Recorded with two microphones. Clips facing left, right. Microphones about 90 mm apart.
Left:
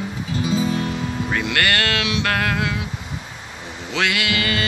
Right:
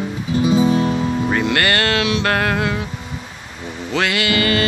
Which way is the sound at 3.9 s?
Centre (ahead or behind).